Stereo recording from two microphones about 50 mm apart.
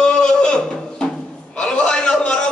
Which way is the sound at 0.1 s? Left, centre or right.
Centre.